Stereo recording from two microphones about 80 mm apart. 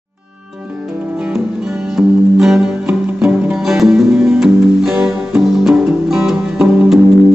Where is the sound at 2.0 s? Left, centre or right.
Centre.